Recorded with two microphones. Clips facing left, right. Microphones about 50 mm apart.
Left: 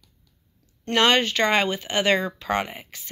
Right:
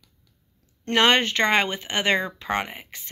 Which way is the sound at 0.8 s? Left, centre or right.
Right.